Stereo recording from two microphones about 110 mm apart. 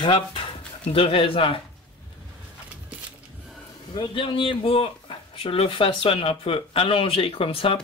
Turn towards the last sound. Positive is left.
turn(degrees=55)  # may be behind; listen again after turning